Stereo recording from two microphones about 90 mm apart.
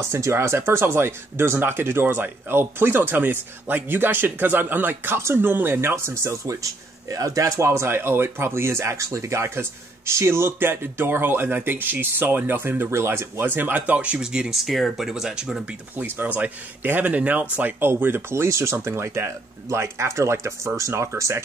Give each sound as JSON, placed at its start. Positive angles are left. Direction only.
{"t": 0.0, "sound": "speech", "side_deg": -30}